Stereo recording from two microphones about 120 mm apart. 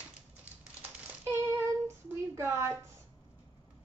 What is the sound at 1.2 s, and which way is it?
Child singing, 20° right (ahead or behind).